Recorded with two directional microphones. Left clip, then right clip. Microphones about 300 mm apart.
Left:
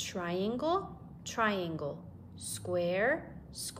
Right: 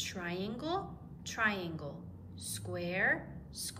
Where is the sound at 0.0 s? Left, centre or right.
Centre.